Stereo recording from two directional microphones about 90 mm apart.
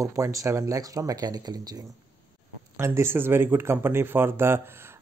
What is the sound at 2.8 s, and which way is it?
Speech, 30° right (ahead or behind).